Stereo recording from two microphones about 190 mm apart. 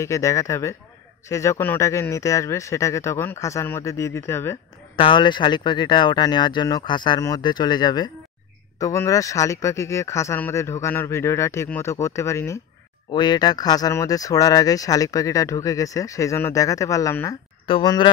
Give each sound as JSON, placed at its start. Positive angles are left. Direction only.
{"t": 0.0, "sound": "speech", "side_deg": 15}
{"t": 4.9, "sound": "speech", "side_deg": 25}